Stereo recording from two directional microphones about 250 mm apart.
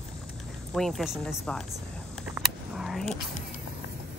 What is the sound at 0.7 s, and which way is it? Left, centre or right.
Speech, centre.